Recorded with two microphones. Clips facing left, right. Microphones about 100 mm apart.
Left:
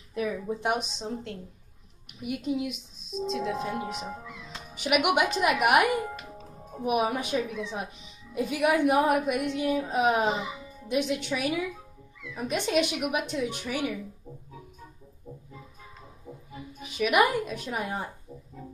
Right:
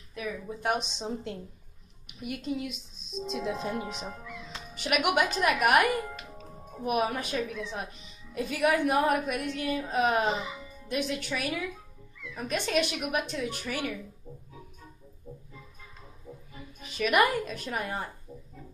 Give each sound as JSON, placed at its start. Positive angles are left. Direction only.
{"t": 0.5, "sound": "speech", "side_deg": 20}
{"t": 1.0, "sound": "a woman's voice", "side_deg": -15}
{"t": 2.2, "sound": "a woman's voice", "side_deg": 10}
{"t": 3.3, "sound": "a woman's voice", "side_deg": -10}
{"t": 3.8, "sound": "a woman's voice", "side_deg": 15}
{"t": 10.9, "sound": "a woman's voice", "side_deg": 15}
{"t": 16.3, "sound": "music", "side_deg": 15}
{"t": 16.8, "sound": "a woman's voice", "side_deg": 10}